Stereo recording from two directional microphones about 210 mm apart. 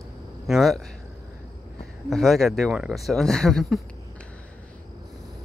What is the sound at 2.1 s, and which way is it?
Speech, centre (ahead or behind).